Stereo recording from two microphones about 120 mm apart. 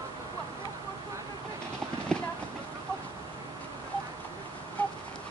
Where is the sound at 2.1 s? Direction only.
10° left (ahead or behind).